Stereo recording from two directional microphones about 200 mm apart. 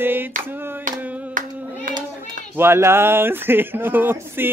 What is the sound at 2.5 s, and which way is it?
Speech, 10° right (ahead or behind).